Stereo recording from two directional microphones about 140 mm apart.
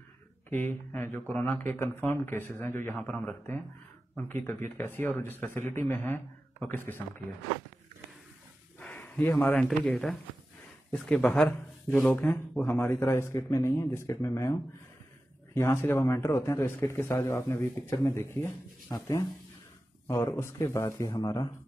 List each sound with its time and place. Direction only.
0.5 s speech: 15° left (ahead or behind)
8.7 s a sound: 10° left (ahead or behind)
9.3 s speech: 10° left (ahead or behind)
9.7 s a man's voice: centre (ahead or behind); by 18.9 s 15° left (ahead or behind)
18.9 s a man's voice: 30° left (ahead or behind)